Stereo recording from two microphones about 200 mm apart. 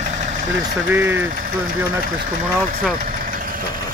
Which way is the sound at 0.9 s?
10° right (ahead or behind).